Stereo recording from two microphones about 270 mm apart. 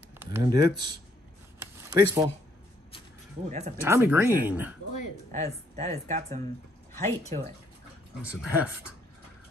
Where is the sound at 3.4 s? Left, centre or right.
Right.